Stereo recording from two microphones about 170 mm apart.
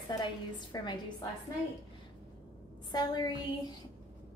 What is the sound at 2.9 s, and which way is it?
Speech, 25° left (ahead or behind).